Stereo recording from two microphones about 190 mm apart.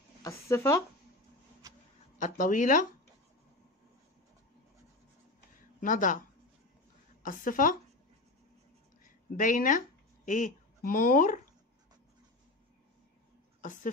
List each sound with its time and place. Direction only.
0.2 s speech: 15° left (ahead or behind)
2.1 s speech: 40° left (ahead or behind)
5.8 s speech: 45° left (ahead or behind)
7.2 s speech: 45° left (ahead or behind)
9.4 s speech: 45° left (ahead or behind)